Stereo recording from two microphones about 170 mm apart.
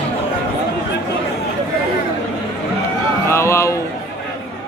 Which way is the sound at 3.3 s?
15° left (ahead or behind).